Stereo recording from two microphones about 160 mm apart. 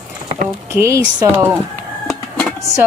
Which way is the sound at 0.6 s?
20° right (ahead or behind).